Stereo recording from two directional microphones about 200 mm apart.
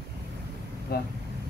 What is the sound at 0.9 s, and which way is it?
Vehicle, 50° left (ahead or behind).